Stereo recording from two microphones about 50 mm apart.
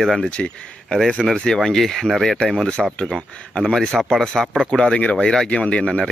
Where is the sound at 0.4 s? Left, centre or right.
Centre.